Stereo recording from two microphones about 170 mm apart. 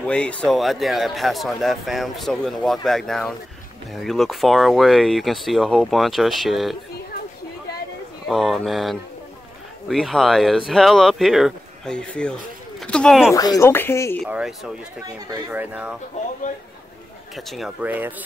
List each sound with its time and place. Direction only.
0.0 s a man's voice: 5° left (ahead or behind)
8.3 s a man's voice: centre (ahead or behind)
13.3 s speech: 20° left (ahead or behind)
14.2 s a man's voice: centre (ahead or behind)
17.4 s a man's voice: centre (ahead or behind)